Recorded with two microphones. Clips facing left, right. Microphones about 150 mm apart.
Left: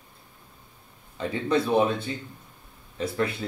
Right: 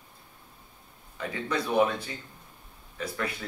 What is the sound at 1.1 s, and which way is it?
Speech, 25° left (ahead or behind).